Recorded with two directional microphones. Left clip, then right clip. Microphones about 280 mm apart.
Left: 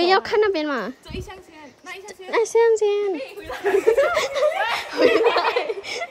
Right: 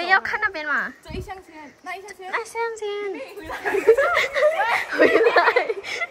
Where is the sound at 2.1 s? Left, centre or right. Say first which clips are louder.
Left 9 dB; centre.